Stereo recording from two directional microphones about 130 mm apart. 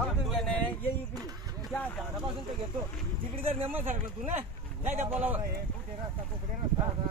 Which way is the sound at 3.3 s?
50° right (ahead or behind).